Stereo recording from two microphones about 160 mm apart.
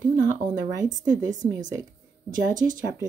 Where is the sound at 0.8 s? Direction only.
50° right (ahead or behind).